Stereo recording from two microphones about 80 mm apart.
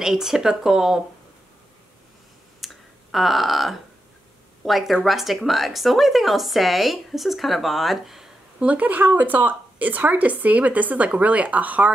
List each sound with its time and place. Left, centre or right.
0.0 s a woman's voice: centre
2.6 s a sound: centre
4.6 s a woman's voice: centre
8.5 s speech: centre